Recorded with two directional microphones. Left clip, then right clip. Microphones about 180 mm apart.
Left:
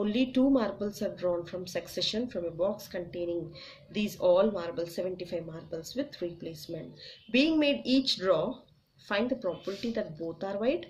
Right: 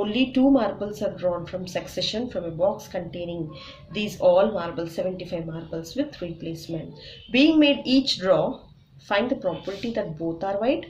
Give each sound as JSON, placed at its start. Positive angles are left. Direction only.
{"t": 0.0, "sound": "speech", "side_deg": 30}